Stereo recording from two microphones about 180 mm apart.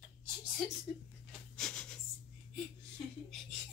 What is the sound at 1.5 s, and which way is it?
Wheeze, 5° left (ahead or behind).